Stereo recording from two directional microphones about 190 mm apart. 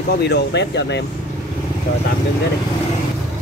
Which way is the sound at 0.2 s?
60° left (ahead or behind).